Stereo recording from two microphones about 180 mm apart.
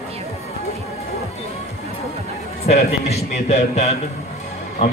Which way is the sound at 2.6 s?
35° left (ahead or behind).